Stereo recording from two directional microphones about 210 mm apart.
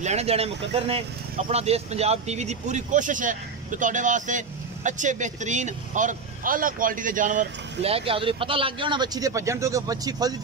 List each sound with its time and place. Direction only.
0.0 s speech: 30° right (ahead or behind)